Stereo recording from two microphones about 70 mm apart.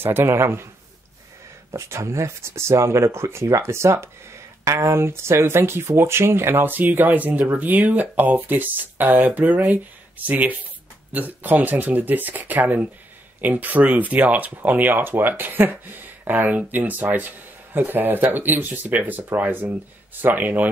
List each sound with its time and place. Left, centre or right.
0.0 s speech: right
1.7 s speech: right